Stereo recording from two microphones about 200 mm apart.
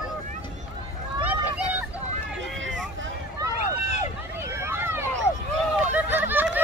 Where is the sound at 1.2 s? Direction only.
5° right (ahead or behind).